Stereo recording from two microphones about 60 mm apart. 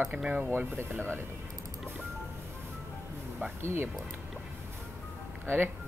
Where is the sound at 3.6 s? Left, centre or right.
Right.